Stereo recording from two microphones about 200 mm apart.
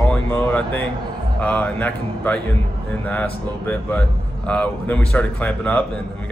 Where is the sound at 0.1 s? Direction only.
10° left (ahead or behind).